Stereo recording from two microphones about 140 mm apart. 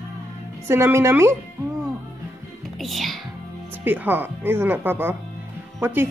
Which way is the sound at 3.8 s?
15° right (ahead or behind).